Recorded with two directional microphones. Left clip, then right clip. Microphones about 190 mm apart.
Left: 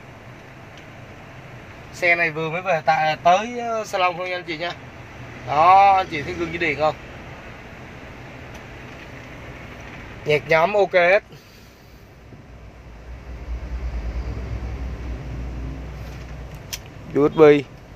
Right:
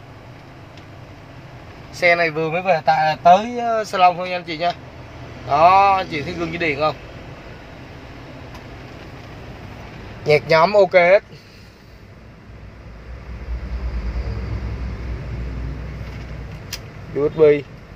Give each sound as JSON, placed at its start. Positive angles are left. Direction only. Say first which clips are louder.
{"t": 2.0, "sound": "speech", "louder": "right 3 dB", "side_deg": -10}
{"t": 3.9, "sound": "speech", "louder": "right 6 dB", "side_deg": -10}
{"t": 10.2, "sound": "speech", "louder": "right 3 dB", "side_deg": -5}
{"t": 17.2, "sound": "speech", "louder": "left 1 dB", "side_deg": 30}